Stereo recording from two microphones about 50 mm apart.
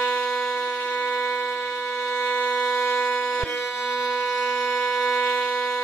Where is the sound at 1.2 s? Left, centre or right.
Left.